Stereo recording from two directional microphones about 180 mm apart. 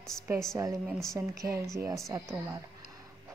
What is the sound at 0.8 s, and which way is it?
Speech, centre (ahead or behind).